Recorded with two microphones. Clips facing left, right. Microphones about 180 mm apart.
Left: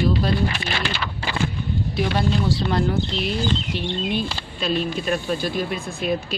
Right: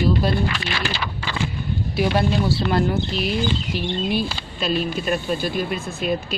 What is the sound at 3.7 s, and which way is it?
Speech, 5° right (ahead or behind).